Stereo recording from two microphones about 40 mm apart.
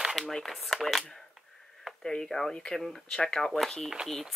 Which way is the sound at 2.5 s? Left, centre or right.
Centre.